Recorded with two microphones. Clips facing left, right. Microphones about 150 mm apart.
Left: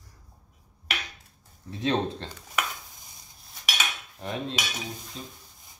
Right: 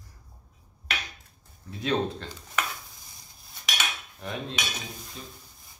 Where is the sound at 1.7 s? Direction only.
25° left (ahead or behind).